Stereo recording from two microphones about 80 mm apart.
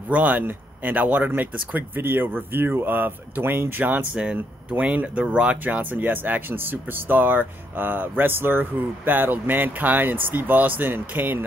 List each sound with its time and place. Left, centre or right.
0.1 s speech: centre